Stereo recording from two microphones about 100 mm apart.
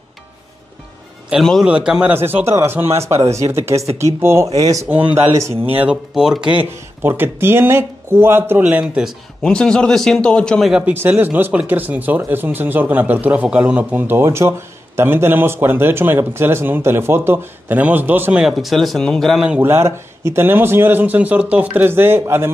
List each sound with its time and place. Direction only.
1.4 s speech: 5° left (ahead or behind)
1.7 s speech: 10° right (ahead or behind)
2.1 s speech: 25° right (ahead or behind)
4.8 s speech: 20° right (ahead or behind)
5.3 s speech: 30° right (ahead or behind)
5.7 s speech: 20° right (ahead or behind)
6.1 s speech: 5° right (ahead or behind)
8.8 s speech: 5° right (ahead or behind)
9.4 s speech: 10° left (ahead or behind)
10.9 s speech: 20° right (ahead or behind)
18.5 s speech: centre (ahead or behind)
19.6 s speech: 25° right (ahead or behind)